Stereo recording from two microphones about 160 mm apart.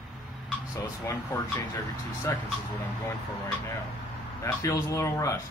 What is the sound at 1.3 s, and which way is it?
Speech, 20° left (ahead or behind).